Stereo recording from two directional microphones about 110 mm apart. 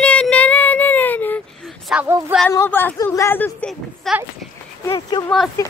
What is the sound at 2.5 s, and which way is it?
Speech, 20° left (ahead or behind).